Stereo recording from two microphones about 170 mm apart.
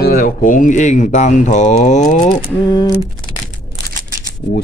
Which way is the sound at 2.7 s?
25° left (ahead or behind).